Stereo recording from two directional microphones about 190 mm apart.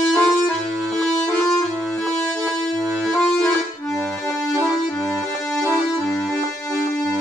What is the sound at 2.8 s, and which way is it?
Accordion, 15° right (ahead or behind).